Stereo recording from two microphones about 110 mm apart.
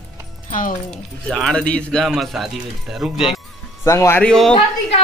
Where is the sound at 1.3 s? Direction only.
5° left (ahead or behind).